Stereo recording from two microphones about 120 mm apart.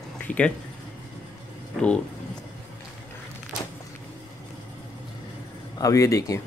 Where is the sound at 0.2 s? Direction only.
10° left (ahead or behind).